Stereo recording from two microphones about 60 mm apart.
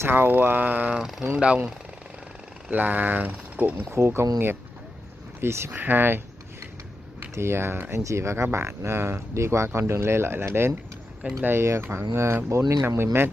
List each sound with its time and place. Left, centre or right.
0.0 s speech: right
0.9 s speech: centre
2.7 s speech: right
3.9 s speech: right
5.4 s speech: right
5.7 s speech: right
7.3 s speech: right
8.0 s speech: right
12.8 s speech: right